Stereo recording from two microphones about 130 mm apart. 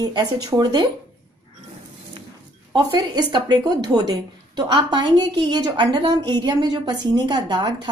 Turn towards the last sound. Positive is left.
turn(degrees=-35)  # may be behind; listen again after turning